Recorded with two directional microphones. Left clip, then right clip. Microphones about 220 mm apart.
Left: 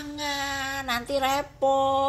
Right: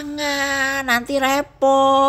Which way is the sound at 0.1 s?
55° right (ahead or behind).